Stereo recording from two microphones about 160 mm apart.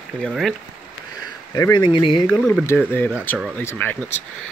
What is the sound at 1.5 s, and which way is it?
Speech, 25° left (ahead or behind).